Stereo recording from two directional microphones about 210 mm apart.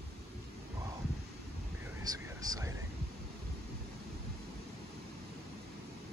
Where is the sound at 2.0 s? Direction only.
15° right (ahead or behind).